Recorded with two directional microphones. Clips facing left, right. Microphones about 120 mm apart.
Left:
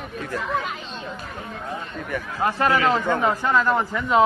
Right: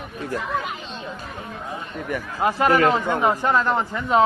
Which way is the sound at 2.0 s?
15° right (ahead or behind).